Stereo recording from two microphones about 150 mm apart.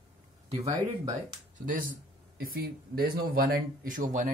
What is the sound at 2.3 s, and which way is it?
Speech, 85° right.